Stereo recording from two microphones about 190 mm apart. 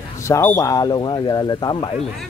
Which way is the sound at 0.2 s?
15° left (ahead or behind).